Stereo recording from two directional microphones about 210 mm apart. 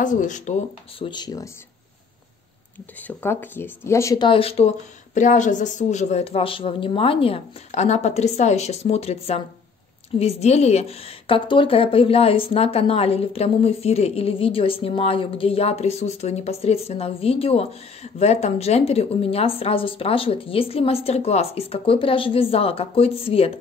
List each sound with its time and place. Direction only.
0.0 s a woman's voice: 35° left (ahead or behind); by 1.5 s 20° left (ahead or behind)
3.1 s a woman's voice: 10° left (ahead or behind); by 23.6 s 25° left (ahead or behind)